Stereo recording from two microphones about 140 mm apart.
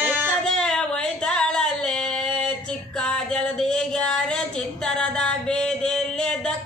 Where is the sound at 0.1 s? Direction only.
15° right (ahead or behind).